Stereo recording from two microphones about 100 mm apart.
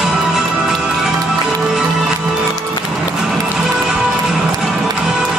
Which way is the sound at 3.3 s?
5° right (ahead or behind).